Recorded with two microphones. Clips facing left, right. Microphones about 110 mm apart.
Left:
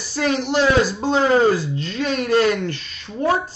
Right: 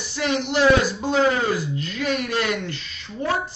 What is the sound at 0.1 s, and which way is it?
A man's voice, 35° left (ahead or behind).